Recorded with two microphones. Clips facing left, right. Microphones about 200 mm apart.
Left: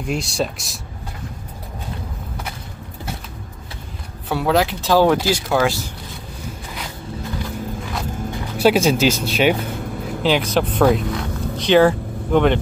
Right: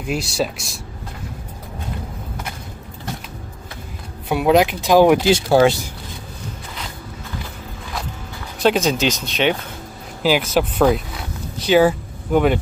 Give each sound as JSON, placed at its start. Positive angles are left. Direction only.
{"t": 0.0, "sound": "speech", "side_deg": 0}
{"t": 4.3, "sound": "speech", "side_deg": -15}
{"t": 8.5, "sound": "speech", "side_deg": 10}
{"t": 10.2, "sound": "speech", "side_deg": -5}